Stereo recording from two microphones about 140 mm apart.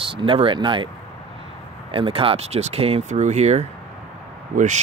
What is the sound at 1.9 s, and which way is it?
Speech, 40° right (ahead or behind).